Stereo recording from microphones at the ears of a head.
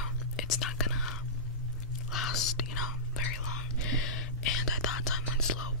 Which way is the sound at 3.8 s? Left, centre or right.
Left.